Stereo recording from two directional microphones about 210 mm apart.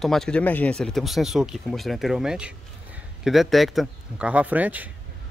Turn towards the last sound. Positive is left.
turn(degrees=-5)  # may be behind; listen again after turning